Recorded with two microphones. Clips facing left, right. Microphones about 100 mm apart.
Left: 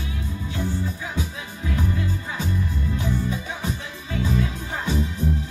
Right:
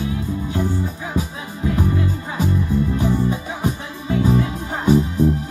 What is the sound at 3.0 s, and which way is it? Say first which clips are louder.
Music: right 6 dB; 30° right (ahead or behind).